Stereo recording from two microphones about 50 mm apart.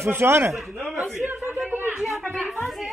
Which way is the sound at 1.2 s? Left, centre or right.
Right.